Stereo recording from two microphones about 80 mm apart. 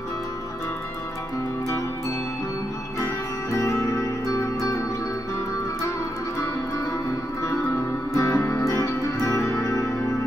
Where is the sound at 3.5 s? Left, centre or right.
Left.